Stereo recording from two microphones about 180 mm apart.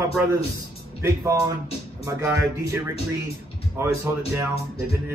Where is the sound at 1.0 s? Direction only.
15° right (ahead or behind).